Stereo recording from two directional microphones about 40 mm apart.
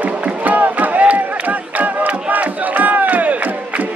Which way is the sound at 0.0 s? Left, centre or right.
Right.